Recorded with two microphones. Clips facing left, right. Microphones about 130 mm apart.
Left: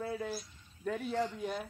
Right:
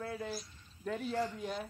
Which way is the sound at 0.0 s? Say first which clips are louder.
Left 2 dB; 10° left (ahead or behind).